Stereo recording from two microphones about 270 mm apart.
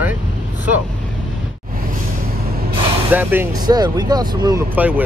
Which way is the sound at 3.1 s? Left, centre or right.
Centre.